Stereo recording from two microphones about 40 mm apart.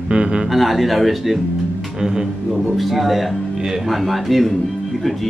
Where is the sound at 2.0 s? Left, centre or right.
Centre.